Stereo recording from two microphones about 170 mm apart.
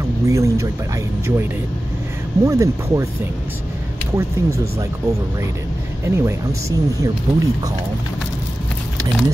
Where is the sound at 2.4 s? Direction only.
20° right (ahead or behind).